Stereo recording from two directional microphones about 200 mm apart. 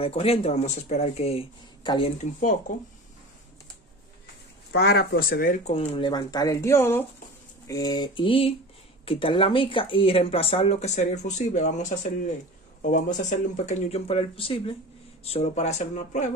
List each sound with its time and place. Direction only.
0.0 s speech: 30° left (ahead or behind)
4.7 s speech: 55° left (ahead or behind)
5.8 s speech: 25° left (ahead or behind)